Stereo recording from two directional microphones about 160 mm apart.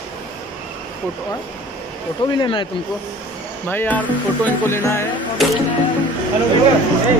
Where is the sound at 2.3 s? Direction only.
30° left (ahead or behind).